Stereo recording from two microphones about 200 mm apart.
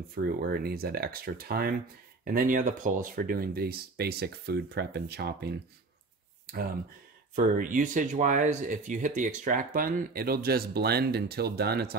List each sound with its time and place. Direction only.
0.1 s speech: 50° right (ahead or behind)
6.4 s a sound: 50° right (ahead or behind)
7.3 s speech: 45° right (ahead or behind)